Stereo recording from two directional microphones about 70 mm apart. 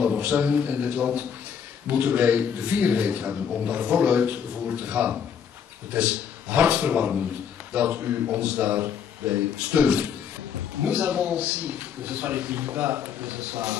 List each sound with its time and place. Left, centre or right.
0.0 s a man's voice: centre